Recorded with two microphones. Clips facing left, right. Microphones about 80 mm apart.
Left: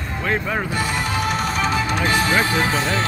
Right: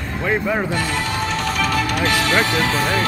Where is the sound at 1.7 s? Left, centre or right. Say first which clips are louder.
Right 1 dB; left.